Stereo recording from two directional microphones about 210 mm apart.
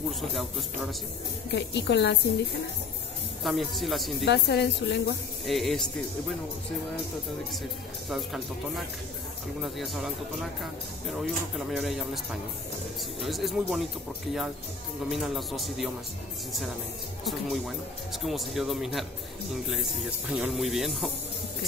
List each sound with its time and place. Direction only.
0.3 s speech: centre (ahead or behind)
1.5 s a woman's voice: 55° left (ahead or behind)
3.4 s speech: centre (ahead or behind)
4.2 s speech: 55° left (ahead or behind)
5.5 s speech: centre (ahead or behind)
8.1 s speech: centre (ahead or behind)
15.0 s speech: centre (ahead or behind)
17.2 s speech: centre (ahead or behind)